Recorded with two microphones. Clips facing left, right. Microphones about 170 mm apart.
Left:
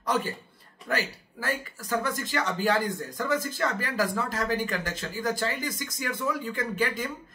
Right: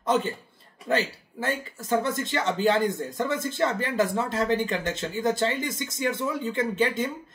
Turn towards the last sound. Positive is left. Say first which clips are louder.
# right 4 dB
turn(degrees=-25)  # may be behind; listen again after turning